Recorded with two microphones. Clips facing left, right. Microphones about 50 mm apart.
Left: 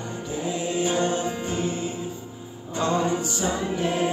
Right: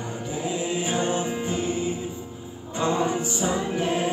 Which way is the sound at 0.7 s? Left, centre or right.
Centre.